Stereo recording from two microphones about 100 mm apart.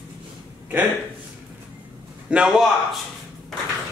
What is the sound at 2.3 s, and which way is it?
Speech, 10° right (ahead or behind).